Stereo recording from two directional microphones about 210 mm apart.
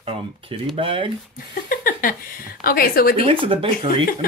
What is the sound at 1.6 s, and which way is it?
A woman's voice, 40° left (ahead or behind).